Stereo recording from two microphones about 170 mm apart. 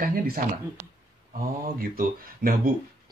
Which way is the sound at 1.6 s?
60° right (ahead or behind).